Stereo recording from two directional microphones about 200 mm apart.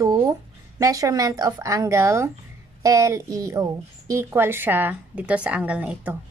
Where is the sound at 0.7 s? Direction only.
15° right (ahead or behind).